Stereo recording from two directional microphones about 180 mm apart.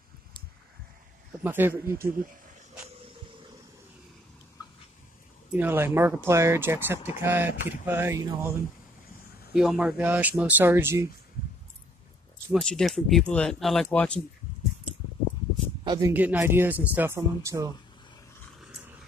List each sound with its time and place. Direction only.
1.4 s speech: 10° right (ahead or behind)
2.0 s speech: 55° right (ahead or behind)
5.5 s speech: 10° right (ahead or behind)
12.5 s speech: centre (ahead or behind)
15.8 s a sound: 25° right (ahead or behind)
16.1 s speech: 10° right (ahead or behind)